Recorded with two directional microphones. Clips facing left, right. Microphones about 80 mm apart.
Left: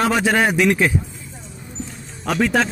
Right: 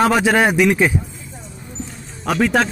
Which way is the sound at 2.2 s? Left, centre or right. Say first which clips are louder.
Right 2 dB; centre.